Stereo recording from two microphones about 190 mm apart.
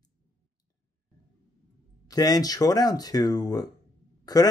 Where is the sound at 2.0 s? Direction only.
20° left (ahead or behind).